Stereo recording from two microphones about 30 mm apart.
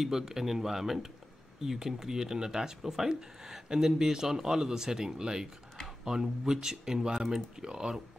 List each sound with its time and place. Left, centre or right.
0.0 s speech: centre
3.1 s speech: right